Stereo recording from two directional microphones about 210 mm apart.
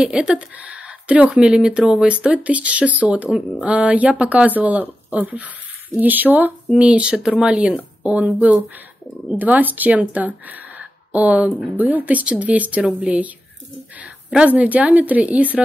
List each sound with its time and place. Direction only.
0.0 s speech: 5° right (ahead or behind)